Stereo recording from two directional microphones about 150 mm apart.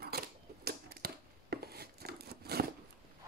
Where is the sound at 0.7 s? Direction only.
90° right.